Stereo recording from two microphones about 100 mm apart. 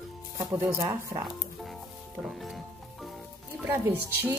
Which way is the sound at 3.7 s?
20° right (ahead or behind).